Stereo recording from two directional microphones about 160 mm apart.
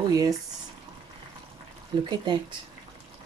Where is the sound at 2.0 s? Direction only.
30° right (ahead or behind).